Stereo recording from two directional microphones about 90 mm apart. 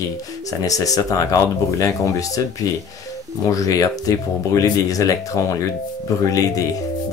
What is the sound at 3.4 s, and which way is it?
Speech, 35° left (ahead or behind).